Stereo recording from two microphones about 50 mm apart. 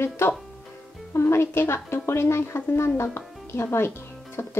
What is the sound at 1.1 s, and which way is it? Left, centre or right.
A woman's voice, left.